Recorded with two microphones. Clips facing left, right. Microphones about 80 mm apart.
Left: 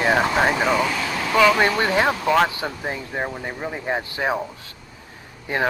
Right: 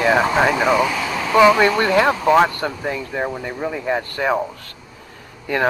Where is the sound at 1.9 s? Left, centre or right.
Centre.